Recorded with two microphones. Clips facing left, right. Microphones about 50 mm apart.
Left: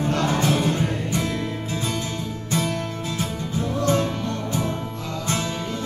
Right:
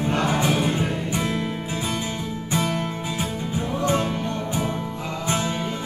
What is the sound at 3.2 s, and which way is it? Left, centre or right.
Music, centre.